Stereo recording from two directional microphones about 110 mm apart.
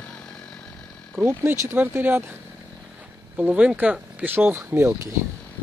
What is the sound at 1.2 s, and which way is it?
Speech, 15° right (ahead or behind).